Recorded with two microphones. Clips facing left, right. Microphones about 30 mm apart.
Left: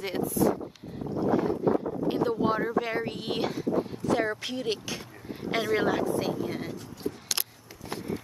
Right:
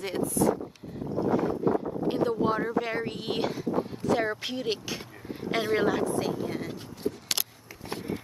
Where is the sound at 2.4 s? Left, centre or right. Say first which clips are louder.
Even; centre.